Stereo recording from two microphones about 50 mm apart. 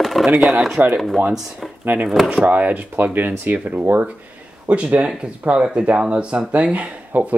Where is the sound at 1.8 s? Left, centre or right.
Right.